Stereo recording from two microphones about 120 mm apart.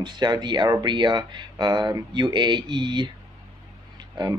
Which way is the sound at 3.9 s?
35° right (ahead or behind).